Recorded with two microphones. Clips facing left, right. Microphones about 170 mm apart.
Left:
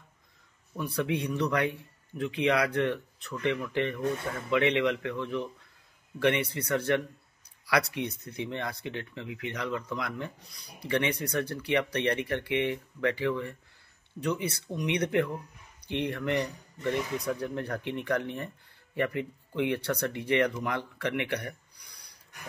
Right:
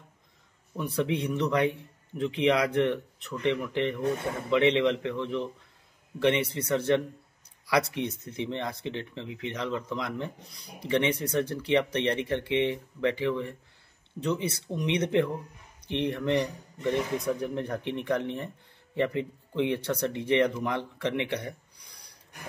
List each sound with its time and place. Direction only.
0.7 s speech: 20° right (ahead or behind)
14.7 s speech: 25° right (ahead or behind)